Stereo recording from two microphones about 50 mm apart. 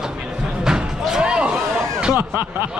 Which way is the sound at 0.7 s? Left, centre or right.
Centre.